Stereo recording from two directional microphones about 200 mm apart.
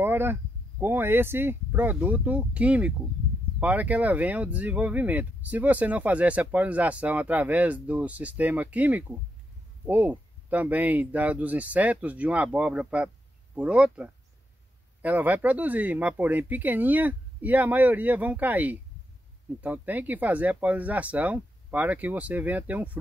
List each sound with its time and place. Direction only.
0.0 s speech: 10° right (ahead or behind)